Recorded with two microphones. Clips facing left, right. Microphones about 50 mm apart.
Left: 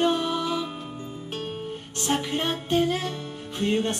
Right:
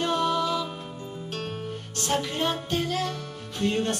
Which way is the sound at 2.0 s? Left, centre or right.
Left.